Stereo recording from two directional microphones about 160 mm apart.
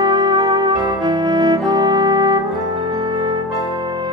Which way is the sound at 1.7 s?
25° right (ahead or behind).